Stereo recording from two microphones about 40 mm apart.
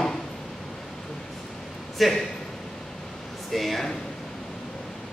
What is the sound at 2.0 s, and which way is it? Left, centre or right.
Speech, centre.